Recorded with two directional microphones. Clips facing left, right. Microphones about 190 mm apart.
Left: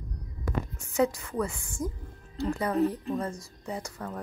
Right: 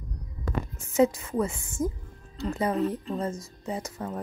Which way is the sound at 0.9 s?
20° right (ahead or behind).